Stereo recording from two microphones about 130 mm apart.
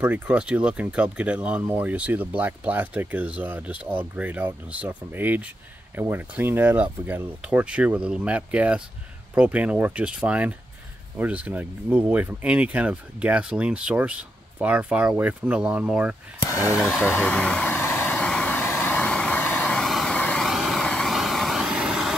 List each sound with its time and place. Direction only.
0.0 s speech: 10° right (ahead or behind)
16.5 s speech: 20° left (ahead or behind)
16.8 s vehicle: 15° left (ahead or behind); by 22.1 s 5° right (ahead or behind)